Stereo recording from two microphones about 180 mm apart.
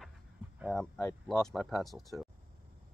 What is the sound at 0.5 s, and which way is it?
Speech, 5° left (ahead or behind).